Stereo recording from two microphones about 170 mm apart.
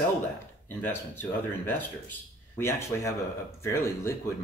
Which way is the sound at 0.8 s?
10° left (ahead or behind).